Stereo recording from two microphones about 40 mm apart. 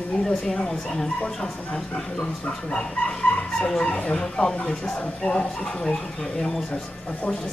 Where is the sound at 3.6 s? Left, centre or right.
Centre.